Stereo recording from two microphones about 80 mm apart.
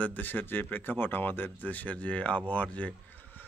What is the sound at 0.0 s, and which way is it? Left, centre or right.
Speech, left.